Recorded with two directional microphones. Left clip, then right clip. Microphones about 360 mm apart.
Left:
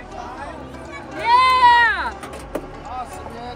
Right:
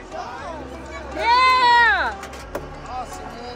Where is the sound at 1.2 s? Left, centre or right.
Centre.